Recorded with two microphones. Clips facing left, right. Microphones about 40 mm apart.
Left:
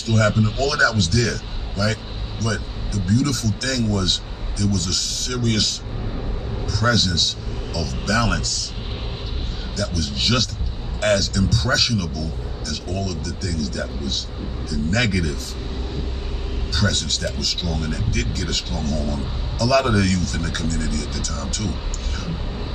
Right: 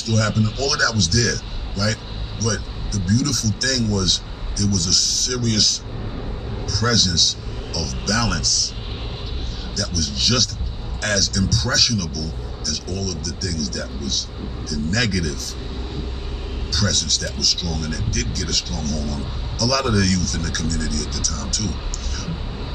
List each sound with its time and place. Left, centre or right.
0.0 s a man's voice: left
9.8 s speech: left
16.7 s speech: left